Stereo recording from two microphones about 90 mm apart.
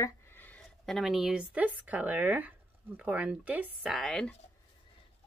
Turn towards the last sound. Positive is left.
turn(degrees=5)  # may be behind; listen again after turning